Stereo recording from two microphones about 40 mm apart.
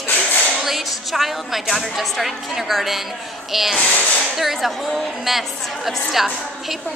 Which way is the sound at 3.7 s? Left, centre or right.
Left.